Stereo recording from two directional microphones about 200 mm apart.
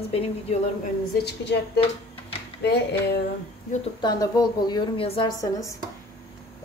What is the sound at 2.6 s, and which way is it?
Speech, 55° left (ahead or behind).